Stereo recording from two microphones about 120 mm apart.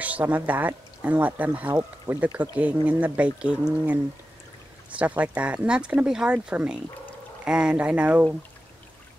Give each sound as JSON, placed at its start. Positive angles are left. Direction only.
{"t": 0.0, "sound": "speech", "side_deg": -15}